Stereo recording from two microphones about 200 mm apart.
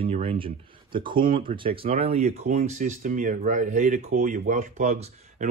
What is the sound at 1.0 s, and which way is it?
Speech, 25° right (ahead or behind).